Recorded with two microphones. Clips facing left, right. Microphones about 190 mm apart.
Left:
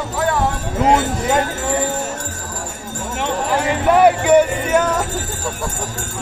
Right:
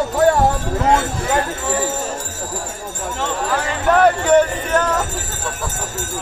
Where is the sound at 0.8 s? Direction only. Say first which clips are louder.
Left 3 dB; 20° left (ahead or behind).